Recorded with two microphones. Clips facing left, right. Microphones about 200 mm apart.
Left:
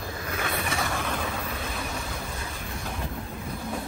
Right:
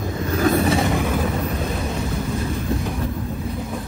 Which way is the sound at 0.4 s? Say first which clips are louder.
Right 14 dB; 40° right (ahead or behind).